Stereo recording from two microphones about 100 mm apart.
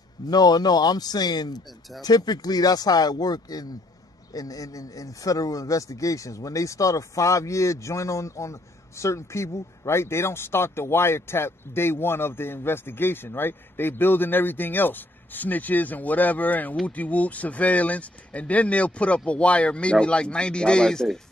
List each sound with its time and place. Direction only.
0.3 s speech: 40° left (ahead or behind); by 21.2 s 5° left (ahead or behind)